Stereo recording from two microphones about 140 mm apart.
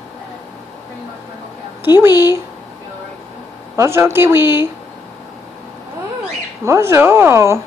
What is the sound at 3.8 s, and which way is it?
Speech, 20° right (ahead or behind).